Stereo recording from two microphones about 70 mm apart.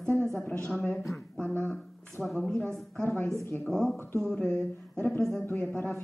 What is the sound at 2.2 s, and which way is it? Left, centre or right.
Speech, centre.